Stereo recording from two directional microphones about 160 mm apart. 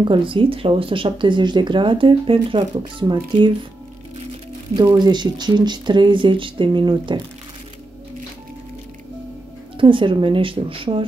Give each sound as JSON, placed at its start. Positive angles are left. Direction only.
{"t": 0.0, "sound": "speech", "side_deg": -30}
{"t": 4.8, "sound": "speech", "side_deg": -25}
{"t": 9.8, "sound": "speech", "side_deg": -30}